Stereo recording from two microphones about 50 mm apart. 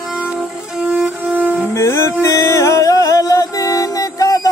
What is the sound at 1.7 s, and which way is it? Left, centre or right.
Music, left.